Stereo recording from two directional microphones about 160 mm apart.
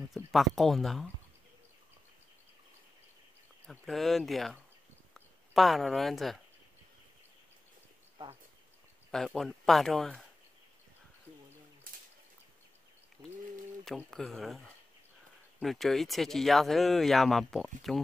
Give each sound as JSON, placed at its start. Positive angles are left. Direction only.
{"t": 0.1, "sound": "speech", "side_deg": 0}
{"t": 3.6, "sound": "speech", "side_deg": 0}
{"t": 9.1, "sound": "speech", "side_deg": 0}
{"t": 13.2, "sound": "bird", "side_deg": -20}
{"t": 13.8, "sound": "speech", "side_deg": 5}
{"t": 15.6, "sound": "speech", "side_deg": 0}